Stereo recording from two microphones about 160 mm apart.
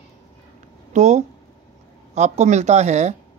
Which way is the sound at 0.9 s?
45° right (ahead or behind).